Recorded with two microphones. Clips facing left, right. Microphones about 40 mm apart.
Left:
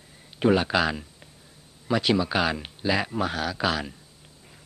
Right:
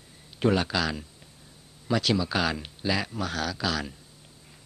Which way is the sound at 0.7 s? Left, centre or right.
Left.